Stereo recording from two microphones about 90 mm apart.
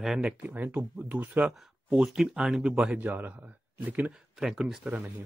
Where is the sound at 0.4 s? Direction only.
20° right (ahead or behind).